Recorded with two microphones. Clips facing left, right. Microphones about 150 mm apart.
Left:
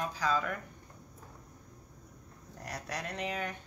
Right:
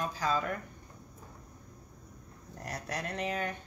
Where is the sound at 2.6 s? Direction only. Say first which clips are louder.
Right 2 dB; 50° right (ahead or behind).